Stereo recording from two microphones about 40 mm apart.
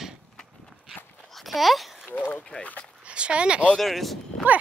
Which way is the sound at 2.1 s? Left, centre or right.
Left.